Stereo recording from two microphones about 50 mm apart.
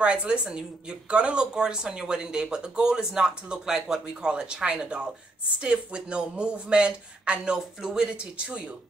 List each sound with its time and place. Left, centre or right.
0.0 s speech: right